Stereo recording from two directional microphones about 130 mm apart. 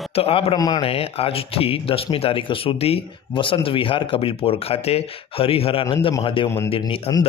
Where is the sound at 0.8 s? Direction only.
50° left (ahead or behind); by 7.2 s 35° left (ahead or behind).